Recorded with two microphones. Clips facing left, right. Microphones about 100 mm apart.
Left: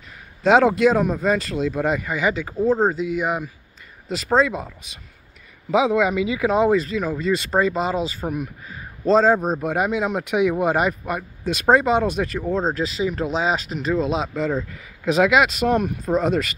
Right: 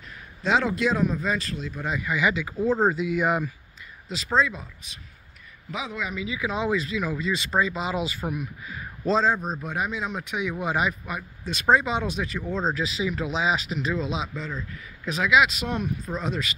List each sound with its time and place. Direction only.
0.4 s speech: 60° left (ahead or behind)
2.0 s speech: 40° left (ahead or behind); by 3.4 s 20° left (ahead or behind)
4.1 s speech: 55° left (ahead or behind)
5.7 s speech: 90° left; by 7.9 s 50° left (ahead or behind)
7.9 s speech: 35° left (ahead or behind)
8.3 s speech: 45° left (ahead or behind)
8.7 s a sound: 35° left (ahead or behind)
9.2 s speech: 60° left (ahead or behind)
10.5 s speech: 50° left (ahead or behind)
14.4 s speech: 75° left (ahead or behind); by 16.5 s 55° left (ahead or behind)